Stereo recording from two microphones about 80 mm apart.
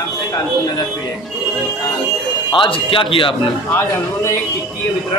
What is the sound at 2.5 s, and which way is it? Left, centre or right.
Speech, left.